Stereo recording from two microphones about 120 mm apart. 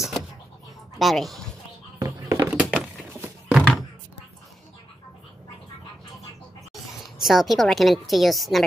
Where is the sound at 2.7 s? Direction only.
10° right (ahead or behind).